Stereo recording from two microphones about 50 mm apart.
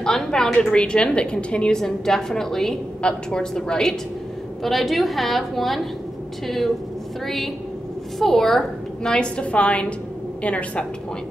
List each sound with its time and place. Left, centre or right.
0.0 s a woman's voice: centre
1.8 s a woman's voice: centre
3.0 s a woman's voice: centre
4.6 s a woman's voice: centre
9.2 s a woman's voice: left